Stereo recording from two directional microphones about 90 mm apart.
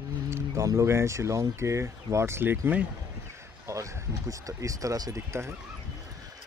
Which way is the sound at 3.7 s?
35° right (ahead or behind).